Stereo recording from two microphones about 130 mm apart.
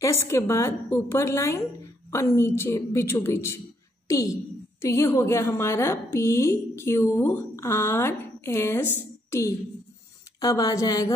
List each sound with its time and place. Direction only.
0.0 s a woman's voice: 20° left (ahead or behind)